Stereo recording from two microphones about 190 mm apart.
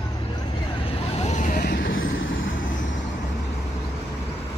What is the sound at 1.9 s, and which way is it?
Vehicle, 90° left.